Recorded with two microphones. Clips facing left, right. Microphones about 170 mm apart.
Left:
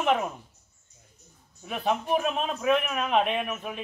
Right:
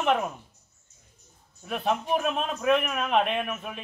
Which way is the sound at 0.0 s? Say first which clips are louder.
Even; centre (ahead or behind).